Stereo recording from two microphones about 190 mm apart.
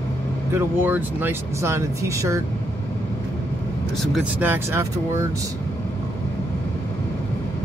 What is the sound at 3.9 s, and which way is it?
Speech, centre (ahead or behind).